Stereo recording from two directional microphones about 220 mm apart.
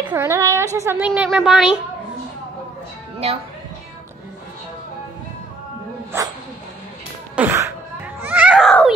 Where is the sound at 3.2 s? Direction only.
25° right (ahead or behind).